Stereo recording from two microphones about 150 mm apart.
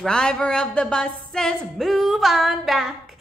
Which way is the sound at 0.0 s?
5° left (ahead or behind).